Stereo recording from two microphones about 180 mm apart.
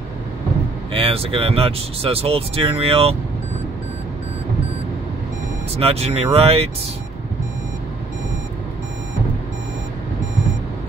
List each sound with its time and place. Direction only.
0.9 s speech: 30° right (ahead or behind)
5.8 s speech: 35° right (ahead or behind)